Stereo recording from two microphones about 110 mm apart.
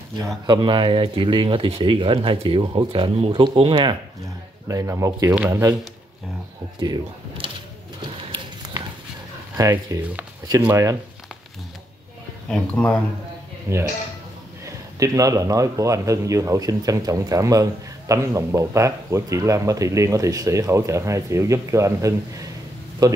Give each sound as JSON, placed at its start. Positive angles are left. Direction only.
{"t": 0.5, "sound": "speech", "side_deg": -45}
{"t": 4.6, "sound": "speech", "side_deg": -30}
{"t": 6.8, "sound": "speech", "side_deg": -50}
{"t": 8.3, "sound": "a sound", "side_deg": -40}
{"t": 9.6, "sound": "speech", "side_deg": -30}
{"t": 12.4, "sound": "speech", "side_deg": 10}
{"t": 13.7, "sound": "speech", "side_deg": -25}